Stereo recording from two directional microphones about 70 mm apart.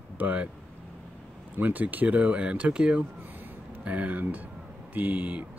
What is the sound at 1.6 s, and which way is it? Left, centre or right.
Speech, right.